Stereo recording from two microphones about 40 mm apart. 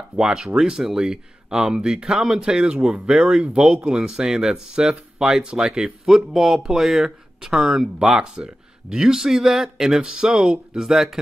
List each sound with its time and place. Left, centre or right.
0.1 s speech: centre
3.4 s speech: right; by 11.1 s centre